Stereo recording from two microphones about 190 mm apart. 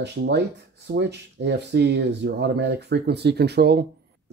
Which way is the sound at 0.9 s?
60° right (ahead or behind).